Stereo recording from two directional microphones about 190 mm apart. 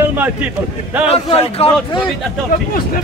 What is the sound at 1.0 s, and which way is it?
Speech, 30° left (ahead or behind).